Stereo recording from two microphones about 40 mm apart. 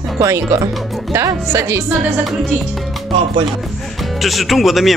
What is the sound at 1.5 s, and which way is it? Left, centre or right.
Speech, right.